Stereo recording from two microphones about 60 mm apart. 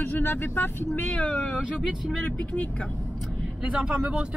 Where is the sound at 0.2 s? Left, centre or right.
Left.